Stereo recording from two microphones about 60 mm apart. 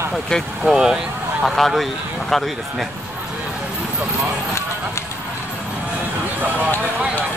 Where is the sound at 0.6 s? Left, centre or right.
Centre.